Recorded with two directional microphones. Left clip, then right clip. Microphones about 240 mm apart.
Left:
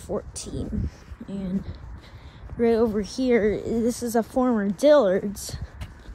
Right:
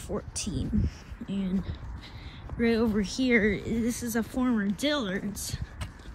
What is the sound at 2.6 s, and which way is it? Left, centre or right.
Speech, centre.